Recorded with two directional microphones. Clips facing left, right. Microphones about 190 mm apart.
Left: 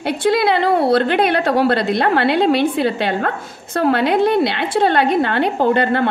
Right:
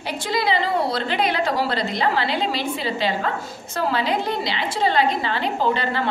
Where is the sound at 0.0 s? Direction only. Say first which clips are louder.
Left 8 dB; 60° left (ahead or behind).